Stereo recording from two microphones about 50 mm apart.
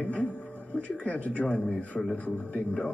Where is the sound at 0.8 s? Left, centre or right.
Left.